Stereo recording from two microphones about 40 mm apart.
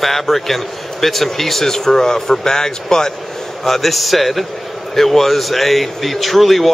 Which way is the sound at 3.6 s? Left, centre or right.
Centre.